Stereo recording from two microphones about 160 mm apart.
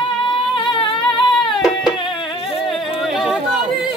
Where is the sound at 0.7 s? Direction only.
30° left (ahead or behind).